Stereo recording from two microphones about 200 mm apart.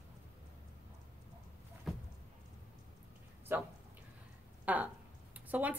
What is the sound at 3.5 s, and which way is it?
A woman's voice, 10° right (ahead or behind).